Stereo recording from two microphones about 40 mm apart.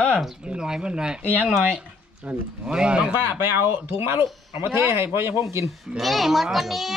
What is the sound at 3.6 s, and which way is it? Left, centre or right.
Speech, right.